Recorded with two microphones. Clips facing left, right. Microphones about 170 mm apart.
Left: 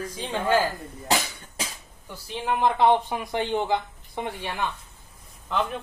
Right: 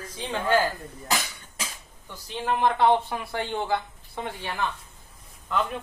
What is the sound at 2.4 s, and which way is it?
Speech, 15° left (ahead or behind).